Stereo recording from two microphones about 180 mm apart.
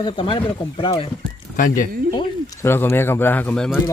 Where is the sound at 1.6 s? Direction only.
50° left (ahead or behind).